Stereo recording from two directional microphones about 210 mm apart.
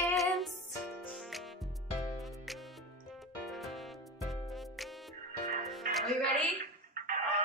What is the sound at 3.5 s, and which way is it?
Music, centre (ahead or behind).